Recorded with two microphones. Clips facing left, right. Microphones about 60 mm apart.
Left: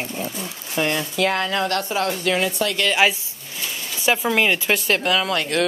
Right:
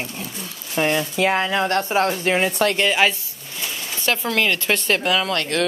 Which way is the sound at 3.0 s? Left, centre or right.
Centre.